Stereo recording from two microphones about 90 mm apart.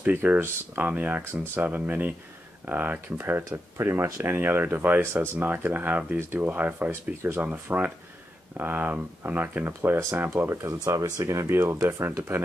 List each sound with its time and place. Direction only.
0.0 s speech: 20° right (ahead or behind)